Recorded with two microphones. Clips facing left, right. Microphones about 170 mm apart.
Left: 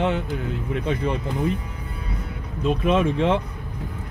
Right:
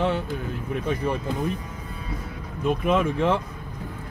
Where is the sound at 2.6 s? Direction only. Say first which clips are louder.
Left 2 dB; 20° left (ahead or behind).